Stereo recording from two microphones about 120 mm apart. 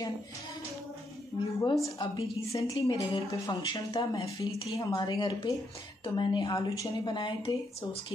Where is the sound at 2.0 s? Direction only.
50° left (ahead or behind); by 7.2 s 25° left (ahead or behind).